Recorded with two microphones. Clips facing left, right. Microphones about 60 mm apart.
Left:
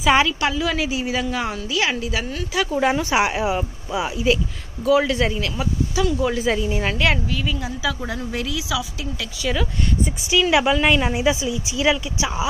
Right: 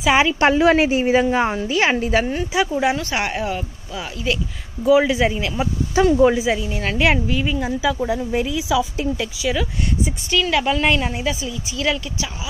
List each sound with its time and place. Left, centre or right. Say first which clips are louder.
0.4 s a woman's voice: right 8 dB; right
2.7 s speech: left 4 dB; centre
3.0 s speech: left 3 dB; centre
4.8 s speech: right 3 dB; centre
5.9 s a woman's voice: right 8 dB; right
6.3 s speech: even; centre
7.0 s speech: right 3 dB; centre
9.4 s speech: left 3 dB; centre
10.3 s speech: left 2 dB; centre
10.7 s speech: left 1 dB; centre